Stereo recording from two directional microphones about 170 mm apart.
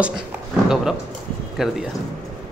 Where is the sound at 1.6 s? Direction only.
Centre (ahead or behind).